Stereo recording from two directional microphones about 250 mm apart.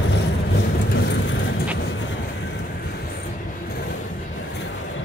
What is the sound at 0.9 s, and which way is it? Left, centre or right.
Vehicle, left.